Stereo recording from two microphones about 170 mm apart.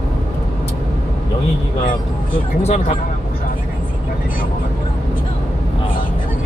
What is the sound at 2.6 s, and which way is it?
Speech, 40° left (ahead or behind).